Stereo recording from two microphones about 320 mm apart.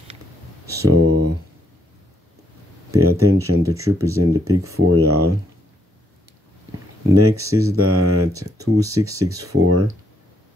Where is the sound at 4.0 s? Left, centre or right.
Centre.